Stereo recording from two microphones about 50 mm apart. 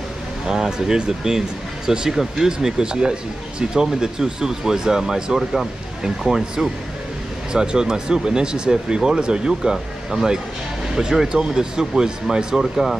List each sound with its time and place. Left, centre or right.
0.5 s speech: centre